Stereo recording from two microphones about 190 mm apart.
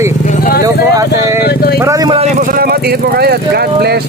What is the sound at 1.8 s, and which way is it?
Speech, 20° right (ahead or behind).